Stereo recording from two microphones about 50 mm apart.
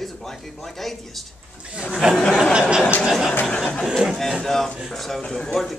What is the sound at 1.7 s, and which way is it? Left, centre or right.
Speech, centre.